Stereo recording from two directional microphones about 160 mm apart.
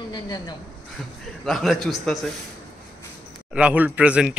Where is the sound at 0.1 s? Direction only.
25° left (ahead or behind).